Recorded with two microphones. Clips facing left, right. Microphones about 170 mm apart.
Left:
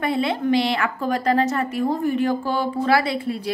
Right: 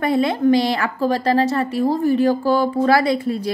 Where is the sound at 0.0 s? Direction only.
40° right (ahead or behind).